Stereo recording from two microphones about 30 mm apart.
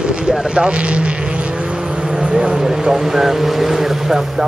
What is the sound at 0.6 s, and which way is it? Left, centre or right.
Speech, right.